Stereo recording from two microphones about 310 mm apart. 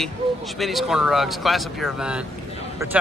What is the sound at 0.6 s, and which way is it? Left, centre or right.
Speech, centre.